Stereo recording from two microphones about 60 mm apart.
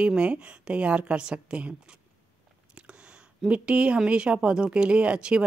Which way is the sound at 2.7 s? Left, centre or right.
Centre.